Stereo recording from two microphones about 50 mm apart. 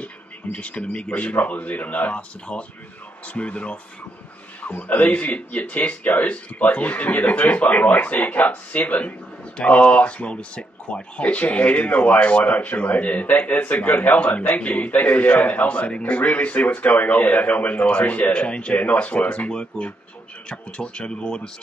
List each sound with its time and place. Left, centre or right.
0.0 s speech: left